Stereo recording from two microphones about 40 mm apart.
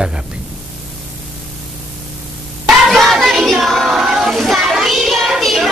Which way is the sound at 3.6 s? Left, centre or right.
Centre.